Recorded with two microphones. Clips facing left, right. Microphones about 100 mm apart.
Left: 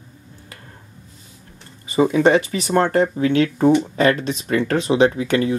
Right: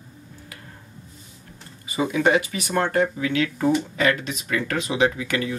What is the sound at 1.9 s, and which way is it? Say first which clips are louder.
Speech: left 5 dB; 35° left (ahead or behind).